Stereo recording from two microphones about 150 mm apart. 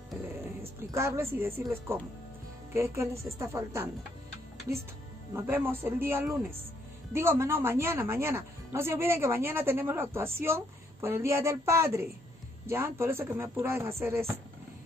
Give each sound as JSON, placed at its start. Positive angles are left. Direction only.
{"t": 0.6, "sound": "a woman's voice", "side_deg": -15}
{"t": 5.3, "sound": "a woman's voice", "side_deg": -15}